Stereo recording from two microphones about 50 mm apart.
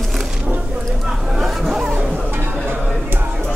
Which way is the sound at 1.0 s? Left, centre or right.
Centre.